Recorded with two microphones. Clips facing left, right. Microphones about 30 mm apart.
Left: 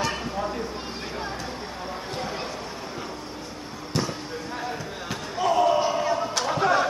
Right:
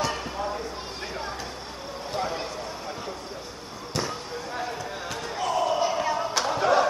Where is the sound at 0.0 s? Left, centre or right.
Centre.